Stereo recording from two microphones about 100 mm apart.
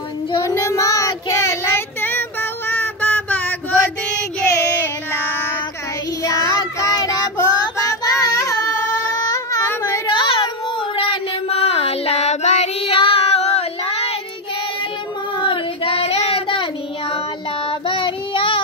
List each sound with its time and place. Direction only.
0.3 s child singing: 40° left (ahead or behind); by 3.8 s 15° left (ahead or behind)
6.2 s child singing: 35° left (ahead or behind)
9.1 s a sound: 35° left (ahead or behind)
10.1 s child singing: 55° left (ahead or behind); by 14.1 s 85° left
15.3 s child singing: 60° left (ahead or behind)
17.6 s child singing: 60° left (ahead or behind)